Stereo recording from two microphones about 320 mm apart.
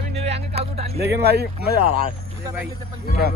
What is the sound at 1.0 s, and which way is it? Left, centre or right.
Speech, right.